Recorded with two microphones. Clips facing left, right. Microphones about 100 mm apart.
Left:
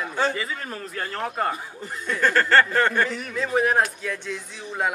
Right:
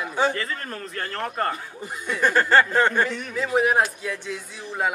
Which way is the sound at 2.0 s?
15° right (ahead or behind).